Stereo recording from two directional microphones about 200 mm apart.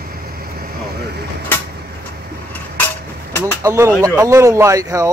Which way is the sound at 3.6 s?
15° right (ahead or behind).